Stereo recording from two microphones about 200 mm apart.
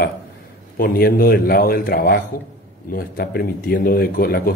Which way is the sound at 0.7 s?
50° left (ahead or behind).